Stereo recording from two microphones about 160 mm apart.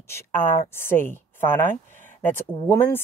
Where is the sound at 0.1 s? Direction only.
15° left (ahead or behind).